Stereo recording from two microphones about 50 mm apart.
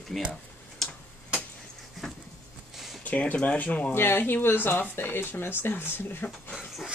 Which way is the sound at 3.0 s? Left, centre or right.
Left.